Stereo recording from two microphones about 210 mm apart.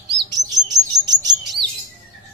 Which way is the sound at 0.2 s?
20° right (ahead or behind).